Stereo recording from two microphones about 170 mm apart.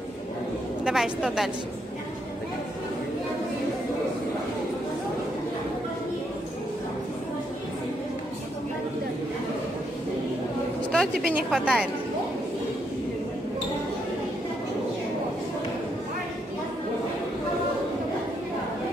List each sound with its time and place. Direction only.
0.8 s speech: 5° right (ahead or behind)
10.9 s a sound: centre (ahead or behind)
11.3 s speech: 5° right (ahead or behind)